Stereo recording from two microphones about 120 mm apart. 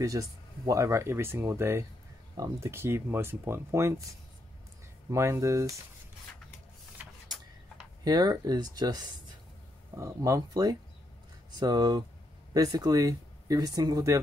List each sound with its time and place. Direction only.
0.0 s speech: 30° right (ahead or behind)
5.1 s speech: 25° right (ahead or behind)
8.0 s speech: 35° right (ahead or behind)